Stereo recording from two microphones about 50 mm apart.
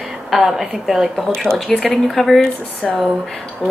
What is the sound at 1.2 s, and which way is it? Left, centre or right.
A woman's voice, centre.